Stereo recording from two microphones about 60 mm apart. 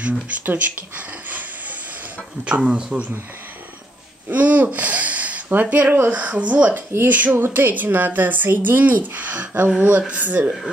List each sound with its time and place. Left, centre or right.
0.0 s speech: right
2.4 s speech: centre
4.3 s speech: right
7.3 s speech: right